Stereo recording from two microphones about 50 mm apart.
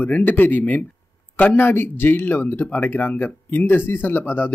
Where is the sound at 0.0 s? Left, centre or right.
Left.